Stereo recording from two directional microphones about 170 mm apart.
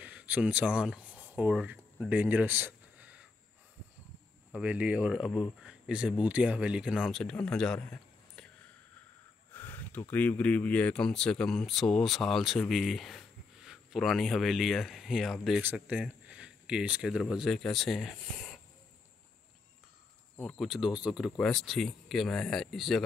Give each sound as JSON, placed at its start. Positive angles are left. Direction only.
{"t": 0.0, "sound": "a sound", "side_deg": -10}
{"t": 4.5, "sound": "speech", "side_deg": -5}
{"t": 9.5, "sound": "speech", "side_deg": 10}
{"t": 20.3, "sound": "speech", "side_deg": 0}